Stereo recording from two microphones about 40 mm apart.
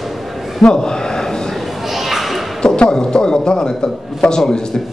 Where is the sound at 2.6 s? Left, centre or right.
Left.